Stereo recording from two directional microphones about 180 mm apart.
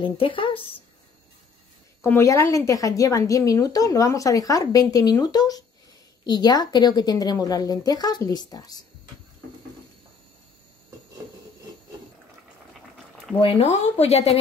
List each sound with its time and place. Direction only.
0.0 s a woman's voice: 30° left (ahead or behind)
2.0 s a woman's voice: 15° left (ahead or behind)
13.4 s speech: 35° left (ahead or behind)